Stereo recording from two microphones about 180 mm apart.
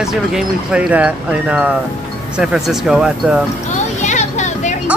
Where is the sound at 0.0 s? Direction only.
5° right (ahead or behind).